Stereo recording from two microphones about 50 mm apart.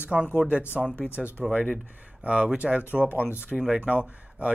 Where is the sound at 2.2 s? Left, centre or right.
Right.